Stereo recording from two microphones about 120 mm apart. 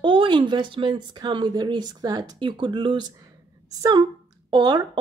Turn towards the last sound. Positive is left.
turn(degrees=-40)  # may be behind; listen again after turning